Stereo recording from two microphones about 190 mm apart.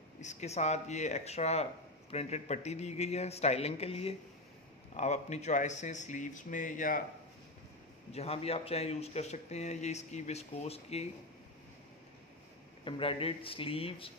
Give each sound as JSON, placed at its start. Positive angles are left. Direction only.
{"t": 0.2, "sound": "speech", "side_deg": 40}
{"t": 8.1, "sound": "speech", "side_deg": 30}
{"t": 12.8, "sound": "speech", "side_deg": 25}